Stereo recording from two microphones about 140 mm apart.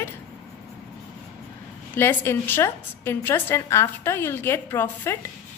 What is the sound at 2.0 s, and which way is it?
A woman's voice, 15° left (ahead or behind).